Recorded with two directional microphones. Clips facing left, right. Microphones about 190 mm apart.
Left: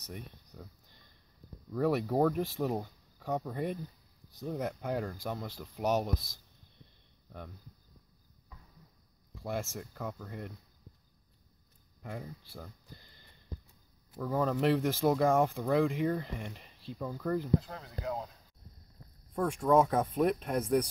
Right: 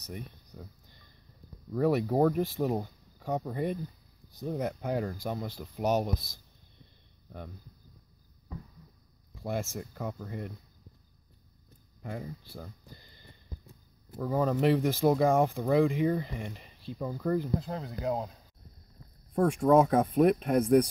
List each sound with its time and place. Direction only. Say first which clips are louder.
0.0 s speech: right 3 dB; centre (ahead or behind)
1.7 s speech: right 3 dB; centre (ahead or behind)
9.4 s speech: right 3 dB; centre (ahead or behind)
12.0 s speech: right 3 dB; centre (ahead or behind)
14.1 s speech: right 3 dB; 10° right (ahead or behind)
17.1 s speech: right 3 dB; 15° right (ahead or behind)
17.6 s speech: right 6 dB; 25° right (ahead or behind)
19.8 s speech: right 4 dB; 15° right (ahead or behind)